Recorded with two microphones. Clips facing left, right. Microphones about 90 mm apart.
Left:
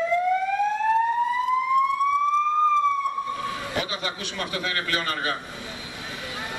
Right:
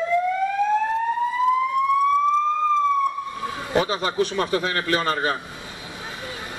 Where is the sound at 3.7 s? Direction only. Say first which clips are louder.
Right 8 dB; 35° right (ahead or behind).